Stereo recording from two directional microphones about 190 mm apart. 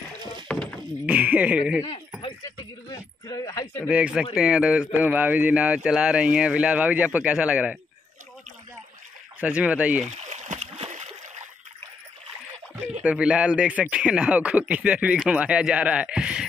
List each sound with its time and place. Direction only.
0.5 s a sound: 5° left (ahead or behind)
1.0 s speech: 5° right (ahead or behind)
1.8 s speech: 20° left (ahead or behind)
3.8 s speech: 5° right (ahead or behind)
9.4 s speech: 5° right (ahead or behind)
10.1 s splash: 35° right (ahead or behind)
13.0 s speech: 5° right (ahead or behind)